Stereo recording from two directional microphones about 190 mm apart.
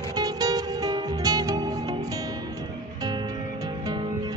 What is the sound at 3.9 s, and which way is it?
Music, 25° right (ahead or behind).